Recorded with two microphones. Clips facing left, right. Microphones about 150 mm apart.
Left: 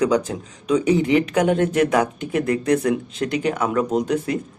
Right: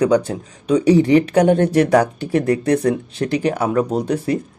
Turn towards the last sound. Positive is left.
turn(degrees=-35)  # may be behind; listen again after turning